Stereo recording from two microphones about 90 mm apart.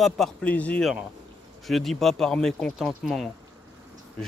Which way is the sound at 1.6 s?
Centre (ahead or behind).